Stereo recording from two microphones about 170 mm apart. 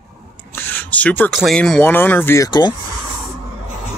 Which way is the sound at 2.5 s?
25° left (ahead or behind).